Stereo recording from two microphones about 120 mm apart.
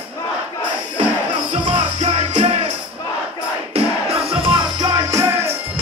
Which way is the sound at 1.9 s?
65° right (ahead or behind).